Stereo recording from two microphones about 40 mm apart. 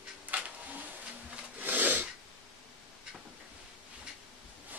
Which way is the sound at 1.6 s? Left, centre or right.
Right.